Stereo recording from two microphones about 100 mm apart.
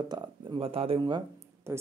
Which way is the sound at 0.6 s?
70° right (ahead or behind).